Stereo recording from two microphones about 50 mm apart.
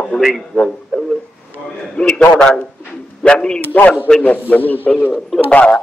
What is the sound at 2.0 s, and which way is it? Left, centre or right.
A man's voice, left.